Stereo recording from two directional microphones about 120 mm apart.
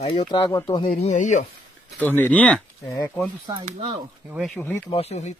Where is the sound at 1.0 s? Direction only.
90° left.